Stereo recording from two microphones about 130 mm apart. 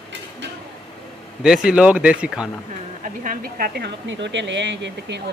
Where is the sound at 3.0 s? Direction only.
90° right.